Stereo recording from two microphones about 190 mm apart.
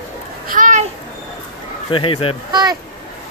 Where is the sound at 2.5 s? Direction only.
20° right (ahead or behind).